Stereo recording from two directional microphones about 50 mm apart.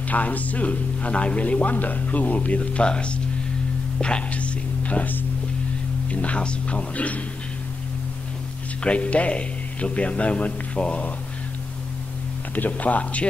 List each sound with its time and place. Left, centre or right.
0.1 s a man's voice: left
8.8 s a man's voice: left
12.5 s speech: left